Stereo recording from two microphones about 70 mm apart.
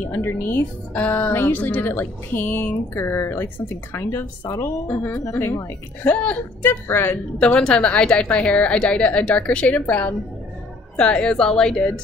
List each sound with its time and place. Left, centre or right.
0.1 s a woman's voice: left
1.0 s a woman's voice: centre
4.8 s a woman's voice: left
6.0 s a woman's voice: centre
6.6 s a woman's voice: left
7.3 s a woman's voice: centre